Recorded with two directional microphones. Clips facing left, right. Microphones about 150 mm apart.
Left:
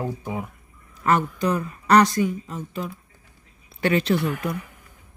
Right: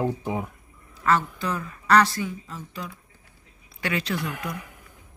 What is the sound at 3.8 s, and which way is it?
Speech, 25° left (ahead or behind).